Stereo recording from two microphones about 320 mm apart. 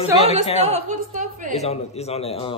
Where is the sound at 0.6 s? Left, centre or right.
Right.